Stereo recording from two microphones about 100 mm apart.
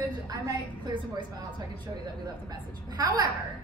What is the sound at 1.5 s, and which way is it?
A woman's voice, 45° right (ahead or behind).